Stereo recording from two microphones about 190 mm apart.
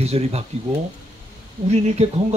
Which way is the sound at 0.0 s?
35° right (ahead or behind).